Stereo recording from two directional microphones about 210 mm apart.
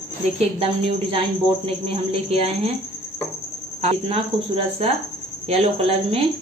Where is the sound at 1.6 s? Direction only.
30° right (ahead or behind).